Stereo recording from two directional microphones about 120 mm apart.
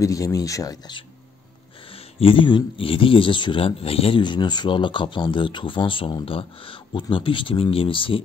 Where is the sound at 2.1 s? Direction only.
45° left (ahead or behind).